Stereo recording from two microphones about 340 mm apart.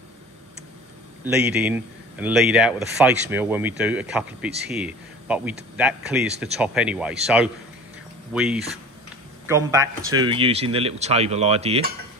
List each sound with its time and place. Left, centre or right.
1.2 s speech: centre